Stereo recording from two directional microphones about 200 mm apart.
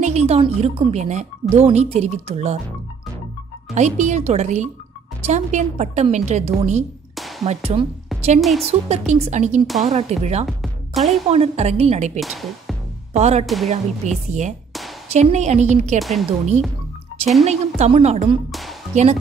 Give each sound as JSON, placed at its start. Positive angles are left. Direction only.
{"t": 0.0, "sound": "a woman's voice", "side_deg": -35}
{"t": 3.7, "sound": "a woman's voice", "side_deg": -35}
{"t": 7.2, "sound": "music", "side_deg": 0}
{"t": 7.4, "sound": "a woman's voice", "side_deg": -30}
{"t": 8.4, "sound": "speech", "side_deg": 0}
{"t": 8.6, "sound": "a woman's voice", "side_deg": -35}
{"t": 10.4, "sound": "music", "side_deg": 0}
{"t": 11.2, "sound": "a woman's voice", "side_deg": -30}
{"t": 12.2, "sound": "speech", "side_deg": 0}
{"t": 13.1, "sound": "a woman's voice", "side_deg": -35}
{"t": 16.0, "sound": "speech", "side_deg": 0}
{"t": 17.5, "sound": "a woman's voice", "side_deg": -35}